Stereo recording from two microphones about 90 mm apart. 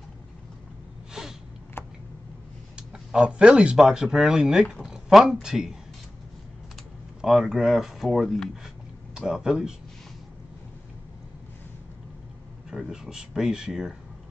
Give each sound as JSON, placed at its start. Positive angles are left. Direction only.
{"t": 1.2, "sound": "sniff", "side_deg": -5}
{"t": 1.8, "sound": "a sound", "side_deg": 25}
{"t": 2.7, "sound": "speech", "side_deg": -5}
{"t": 7.2, "sound": "speech", "side_deg": 0}
{"t": 12.6, "sound": "speech", "side_deg": -5}